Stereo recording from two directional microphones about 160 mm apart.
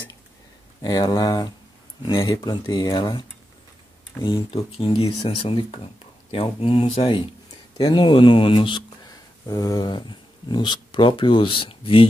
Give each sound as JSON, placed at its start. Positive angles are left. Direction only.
{"t": 0.8, "sound": "speech", "side_deg": 25}